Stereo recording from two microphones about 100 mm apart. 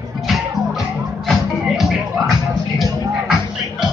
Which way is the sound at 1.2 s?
Centre (ahead or behind).